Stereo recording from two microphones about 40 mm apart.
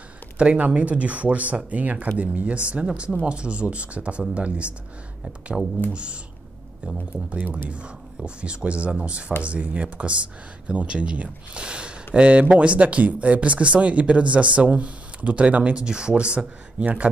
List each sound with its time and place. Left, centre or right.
0.4 s speech: right
5.5 s speech: centre
7.2 s speech: right
7.5 s speech: right